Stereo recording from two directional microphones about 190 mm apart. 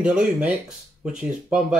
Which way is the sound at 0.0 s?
5° right (ahead or behind).